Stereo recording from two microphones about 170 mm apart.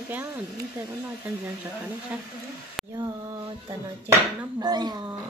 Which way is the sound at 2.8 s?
Centre (ahead or behind).